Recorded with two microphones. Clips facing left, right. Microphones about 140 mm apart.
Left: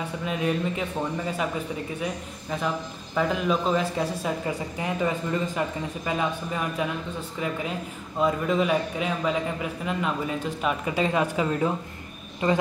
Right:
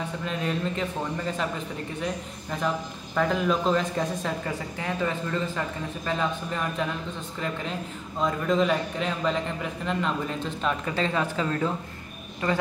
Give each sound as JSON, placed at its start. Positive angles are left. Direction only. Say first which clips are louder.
{"t": 0.2, "sound": "a man's voice", "louder": "left 4 dB", "side_deg": 10}
{"t": 2.5, "sound": "a man's voice", "louder": "even", "side_deg": 5}